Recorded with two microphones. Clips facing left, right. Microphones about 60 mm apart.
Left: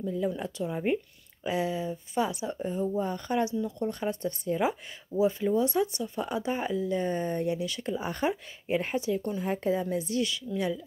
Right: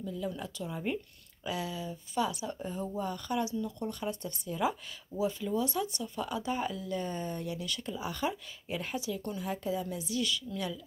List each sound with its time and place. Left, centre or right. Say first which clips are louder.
0.0 s a woman's voice: left 6 dB; left